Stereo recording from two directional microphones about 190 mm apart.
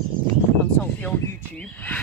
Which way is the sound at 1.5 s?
5° left (ahead or behind).